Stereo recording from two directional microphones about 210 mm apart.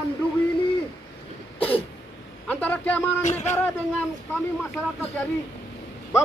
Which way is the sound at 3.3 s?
35° left (ahead or behind).